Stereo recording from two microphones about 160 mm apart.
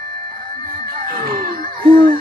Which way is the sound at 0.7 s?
60° right (ahead or behind).